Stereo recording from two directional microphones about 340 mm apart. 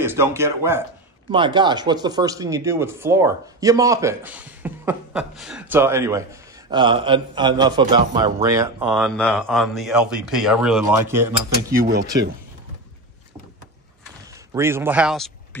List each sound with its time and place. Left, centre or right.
0.0 s a man's voice: centre
11.8 s speech: right
14.5 s a man's voice: centre